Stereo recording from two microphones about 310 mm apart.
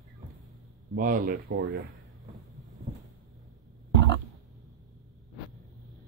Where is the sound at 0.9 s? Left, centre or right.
Right.